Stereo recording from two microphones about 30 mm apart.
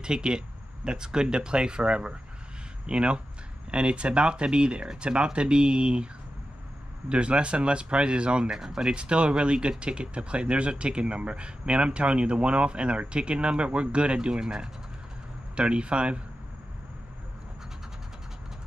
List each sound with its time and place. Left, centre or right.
0.0 s speech: right
7.1 s speech: right
8.5 s speech: centre
8.8 s speech: right
15.5 s speech: right